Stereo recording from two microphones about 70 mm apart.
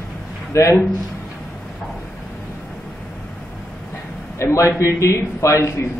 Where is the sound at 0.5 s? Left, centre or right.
Left.